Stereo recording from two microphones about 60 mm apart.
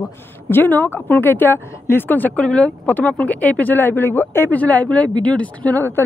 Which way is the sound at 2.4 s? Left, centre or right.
Centre.